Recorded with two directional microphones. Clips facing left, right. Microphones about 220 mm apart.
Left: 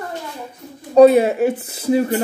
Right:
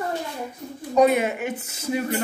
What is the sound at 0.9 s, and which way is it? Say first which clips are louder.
A woman's voice: left 9 dB; 30° left (ahead or behind).